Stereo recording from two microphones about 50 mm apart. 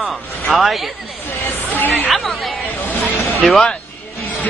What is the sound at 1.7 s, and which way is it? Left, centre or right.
Chatter, left.